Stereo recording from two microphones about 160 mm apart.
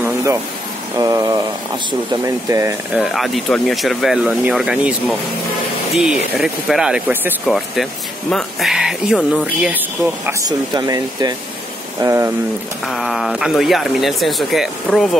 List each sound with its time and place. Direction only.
0.0 s a sound: 20° right (ahead or behind)
0.9 s speech: 20° right (ahead or behind)
2.9 s speech: centre (ahead or behind)
10.7 s speech: 25° right (ahead or behind)
12.8 s speech: centre (ahead or behind)